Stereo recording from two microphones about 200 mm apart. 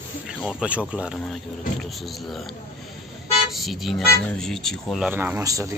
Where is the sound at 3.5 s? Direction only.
Centre (ahead or behind).